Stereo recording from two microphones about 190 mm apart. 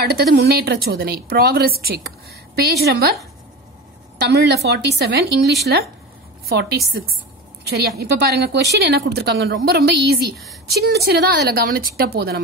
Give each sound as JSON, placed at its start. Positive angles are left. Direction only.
{"t": 0.0, "sound": "a woman's voice", "side_deg": -55}
{"t": 4.3, "sound": "a woman's voice", "side_deg": -60}
{"t": 8.0, "sound": "a woman's voice", "side_deg": -60}